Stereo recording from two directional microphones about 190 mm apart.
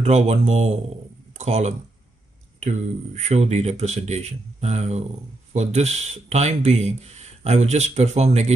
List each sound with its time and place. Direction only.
0.0 s speech: 35° right (ahead or behind)